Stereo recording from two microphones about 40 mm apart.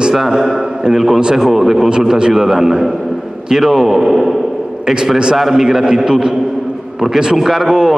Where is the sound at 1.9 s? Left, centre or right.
Centre.